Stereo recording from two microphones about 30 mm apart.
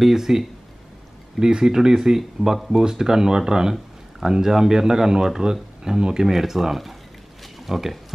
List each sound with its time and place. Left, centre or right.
0.0 s speech: centre
6.2 s speech: centre